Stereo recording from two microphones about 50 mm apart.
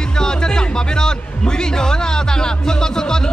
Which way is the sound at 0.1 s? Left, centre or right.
Centre.